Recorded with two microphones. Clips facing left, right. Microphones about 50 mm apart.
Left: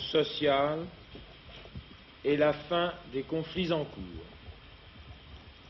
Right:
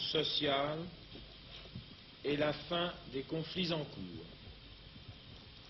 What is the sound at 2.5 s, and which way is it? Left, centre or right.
A man's voice, left.